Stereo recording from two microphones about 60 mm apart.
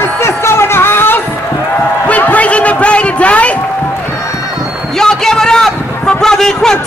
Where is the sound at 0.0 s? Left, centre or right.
Left.